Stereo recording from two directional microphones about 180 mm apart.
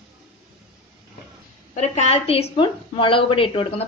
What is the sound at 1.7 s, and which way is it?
A woman's voice, 35° left (ahead or behind).